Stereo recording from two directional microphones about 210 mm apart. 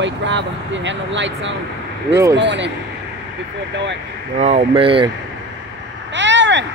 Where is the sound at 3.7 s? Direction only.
55° right (ahead or behind).